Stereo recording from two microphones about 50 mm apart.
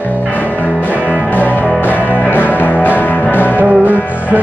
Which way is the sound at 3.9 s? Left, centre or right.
Left.